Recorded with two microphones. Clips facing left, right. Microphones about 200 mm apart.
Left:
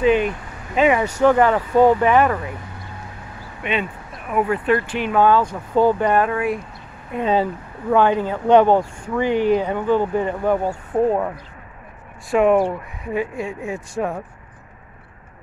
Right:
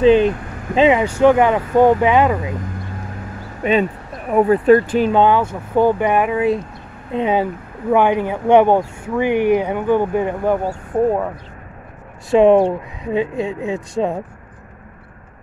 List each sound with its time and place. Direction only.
0.0 s speech: 30° right (ahead or behind)
3.6 s speech: 40° right (ahead or behind)
5.1 s speech: 25° right (ahead or behind)
12.3 s speech: 25° right (ahead or behind)